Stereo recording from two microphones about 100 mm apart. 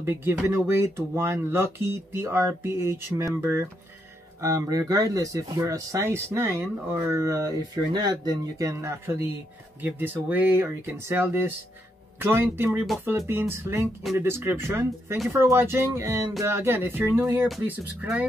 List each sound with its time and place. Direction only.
0.0 s speech: 25° right (ahead or behind)